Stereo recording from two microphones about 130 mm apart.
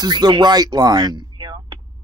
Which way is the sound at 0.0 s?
35° right (ahead or behind).